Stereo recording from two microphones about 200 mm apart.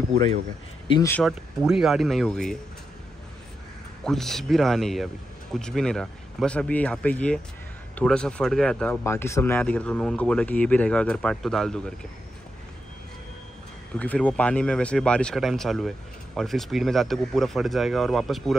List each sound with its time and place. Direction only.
0.8 s speech: 20° left (ahead or behind)
1.1 s speech: centre (ahead or behind)
4.0 s speech: centre (ahead or behind)
13.9 s speech: 5° left (ahead or behind)